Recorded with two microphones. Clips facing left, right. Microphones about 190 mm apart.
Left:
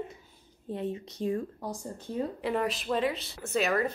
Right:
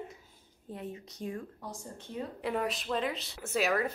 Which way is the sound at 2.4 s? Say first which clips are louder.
Left 1 dB; centre (ahead or behind).